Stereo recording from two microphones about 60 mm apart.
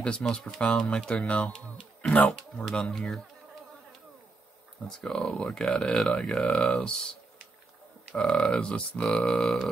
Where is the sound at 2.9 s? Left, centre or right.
Centre.